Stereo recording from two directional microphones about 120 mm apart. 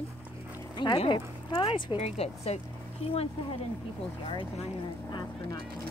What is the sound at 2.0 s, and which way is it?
Speech, 60° left (ahead or behind).